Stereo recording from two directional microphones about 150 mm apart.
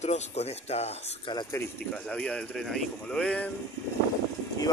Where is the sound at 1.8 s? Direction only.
5° left (ahead or behind).